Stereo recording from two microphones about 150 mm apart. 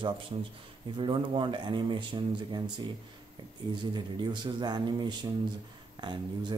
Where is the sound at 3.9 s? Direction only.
30° right (ahead or behind).